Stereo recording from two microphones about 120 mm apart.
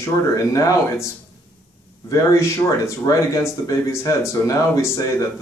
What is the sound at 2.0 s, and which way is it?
Speech, 25° left (ahead or behind).